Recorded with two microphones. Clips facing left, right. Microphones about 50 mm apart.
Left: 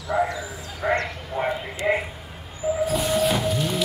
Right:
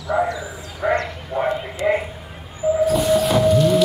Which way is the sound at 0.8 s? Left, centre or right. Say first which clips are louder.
Right 3 dB; centre.